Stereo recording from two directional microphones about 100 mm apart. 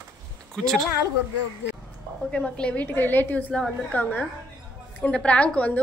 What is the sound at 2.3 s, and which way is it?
A woman's voice, 10° left (ahead or behind).